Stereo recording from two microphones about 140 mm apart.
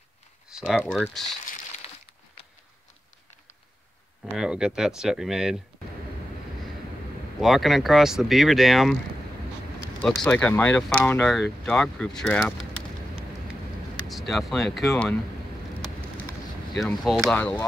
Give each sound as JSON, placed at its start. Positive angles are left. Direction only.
{"t": 0.5, "sound": "a sound", "side_deg": -5}
{"t": 0.8, "sound": "speech", "side_deg": 0}
{"t": 1.8, "sound": "crumpling", "side_deg": 45}
{"t": 4.4, "sound": "speech", "side_deg": -5}
{"t": 7.3, "sound": "speech", "side_deg": 0}
{"t": 10.2, "sound": "speech", "side_deg": 10}
{"t": 14.0, "sound": "speech", "side_deg": 0}
{"t": 16.7, "sound": "speech", "side_deg": 0}